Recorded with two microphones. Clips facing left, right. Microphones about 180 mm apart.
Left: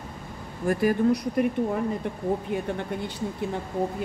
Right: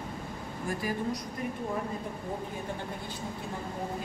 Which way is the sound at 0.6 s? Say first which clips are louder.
Left 11 dB; 65° left (ahead or behind).